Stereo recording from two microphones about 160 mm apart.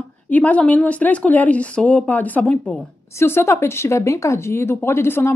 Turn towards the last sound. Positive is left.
turn(degrees=15)  # may be behind; listen again after turning